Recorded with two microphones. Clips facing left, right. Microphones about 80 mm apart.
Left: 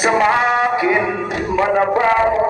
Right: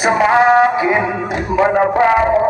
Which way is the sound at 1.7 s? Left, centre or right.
Centre.